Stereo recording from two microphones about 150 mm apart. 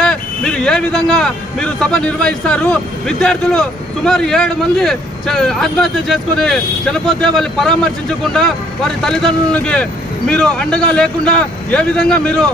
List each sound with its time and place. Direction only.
0.0 s speech: 5° left (ahead or behind)